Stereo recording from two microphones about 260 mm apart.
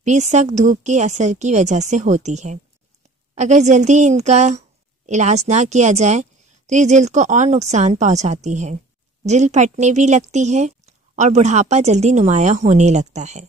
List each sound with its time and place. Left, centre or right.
0.0 s a woman's voice: right